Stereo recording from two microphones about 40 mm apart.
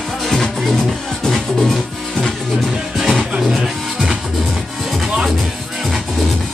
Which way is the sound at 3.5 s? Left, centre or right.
Centre.